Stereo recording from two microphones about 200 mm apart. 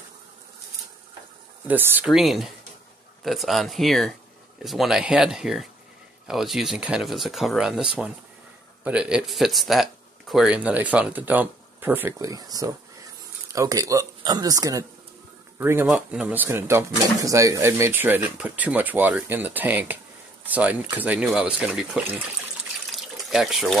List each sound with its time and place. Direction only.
1.7 s speech: 10° right (ahead or behind)
22.8 s water: centre (ahead or behind)